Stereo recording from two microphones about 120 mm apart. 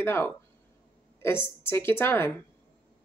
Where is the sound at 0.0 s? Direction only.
20° left (ahead or behind).